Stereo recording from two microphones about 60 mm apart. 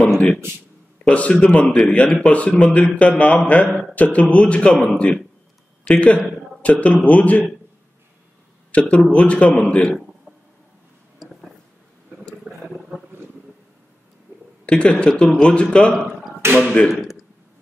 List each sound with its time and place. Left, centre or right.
1.0 s a man's voice: centre
8.7 s a man's voice: left
12.5 s a sound: centre
14.7 s speech: centre
16.4 s speech: right
16.9 s a sound: centre